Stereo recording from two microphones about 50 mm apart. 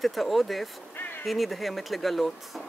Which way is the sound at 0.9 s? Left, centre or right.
Left.